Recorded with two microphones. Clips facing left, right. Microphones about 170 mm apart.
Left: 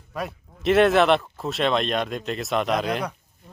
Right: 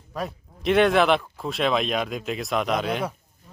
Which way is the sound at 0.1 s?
Centre (ahead or behind).